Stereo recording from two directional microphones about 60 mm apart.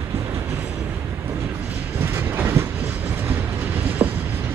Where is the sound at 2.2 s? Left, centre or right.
Right.